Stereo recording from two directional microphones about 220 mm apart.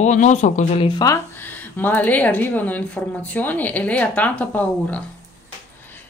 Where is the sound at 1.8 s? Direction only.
10° left (ahead or behind).